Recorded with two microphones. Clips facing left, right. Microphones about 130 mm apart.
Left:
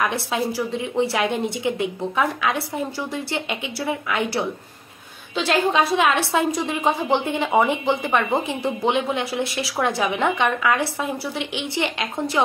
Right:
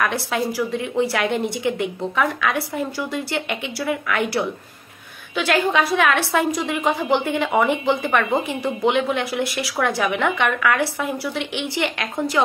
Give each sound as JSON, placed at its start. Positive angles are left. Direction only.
{"t": 0.0, "sound": "speech", "side_deg": 20}
{"t": 5.3, "sound": "speech", "side_deg": 25}